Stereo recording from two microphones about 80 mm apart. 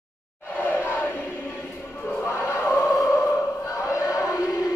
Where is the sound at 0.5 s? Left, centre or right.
Left.